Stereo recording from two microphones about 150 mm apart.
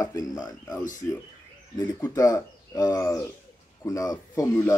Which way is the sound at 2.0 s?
20° left (ahead or behind).